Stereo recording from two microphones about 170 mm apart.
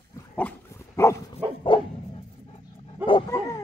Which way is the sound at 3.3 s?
20° left (ahead or behind).